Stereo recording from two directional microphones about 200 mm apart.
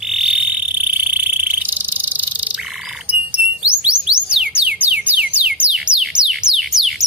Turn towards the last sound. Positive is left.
turn(degrees=0)  # may be behind; listen again after turning